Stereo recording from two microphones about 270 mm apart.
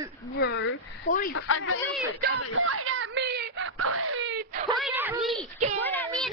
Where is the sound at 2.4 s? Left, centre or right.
Right.